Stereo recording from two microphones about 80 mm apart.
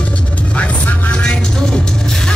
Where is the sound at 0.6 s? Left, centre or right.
Centre.